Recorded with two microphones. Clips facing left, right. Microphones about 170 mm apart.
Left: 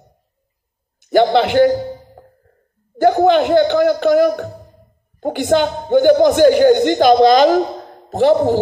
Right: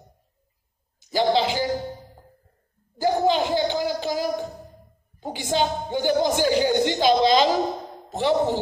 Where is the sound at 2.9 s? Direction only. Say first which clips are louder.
Left 9 dB; 65° left (ahead or behind).